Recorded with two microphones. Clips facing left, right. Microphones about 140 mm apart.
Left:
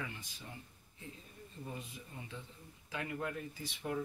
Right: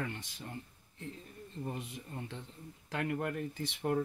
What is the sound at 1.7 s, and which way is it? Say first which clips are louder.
Speech: right 4 dB; 65° right (ahead or behind).